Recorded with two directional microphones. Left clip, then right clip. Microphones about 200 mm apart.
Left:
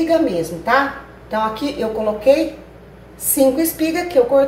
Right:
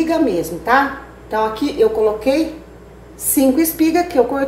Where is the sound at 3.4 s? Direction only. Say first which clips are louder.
Right 1 dB; 35° right (ahead or behind).